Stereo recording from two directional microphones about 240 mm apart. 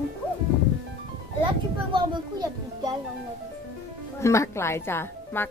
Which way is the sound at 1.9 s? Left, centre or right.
Centre.